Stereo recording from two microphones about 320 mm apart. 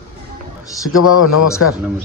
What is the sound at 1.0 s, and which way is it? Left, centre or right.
Speech, left.